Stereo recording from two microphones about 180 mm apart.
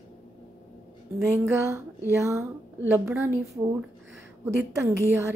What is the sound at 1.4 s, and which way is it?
Speech, 15° right (ahead or behind).